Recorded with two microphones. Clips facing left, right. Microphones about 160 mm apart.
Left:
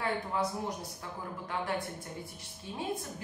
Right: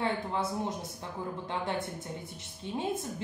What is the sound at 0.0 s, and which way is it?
Speech, 25° right (ahead or behind).